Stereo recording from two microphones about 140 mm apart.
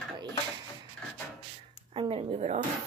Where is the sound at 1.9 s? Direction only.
40° right (ahead or behind).